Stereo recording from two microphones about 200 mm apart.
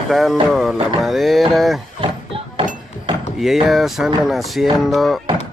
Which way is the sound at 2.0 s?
25° right (ahead or behind).